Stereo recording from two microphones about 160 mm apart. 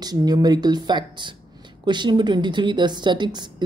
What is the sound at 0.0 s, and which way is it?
A woman's voice, 25° right (ahead or behind).